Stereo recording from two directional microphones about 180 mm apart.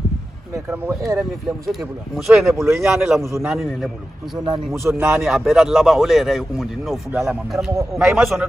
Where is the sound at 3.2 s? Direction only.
15° right (ahead or behind).